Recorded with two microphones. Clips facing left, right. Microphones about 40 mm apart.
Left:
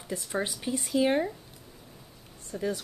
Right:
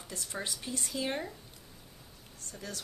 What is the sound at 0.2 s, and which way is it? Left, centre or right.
Speech, centre.